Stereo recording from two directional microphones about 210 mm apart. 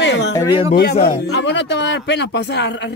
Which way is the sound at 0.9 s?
25° left (ahead or behind).